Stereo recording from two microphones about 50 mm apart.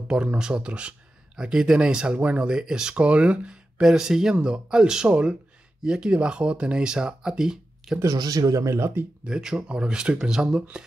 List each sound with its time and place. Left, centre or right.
0.1 s speech: centre
3.8 s speech: centre
8.6 s speech: right
9.2 s speech: centre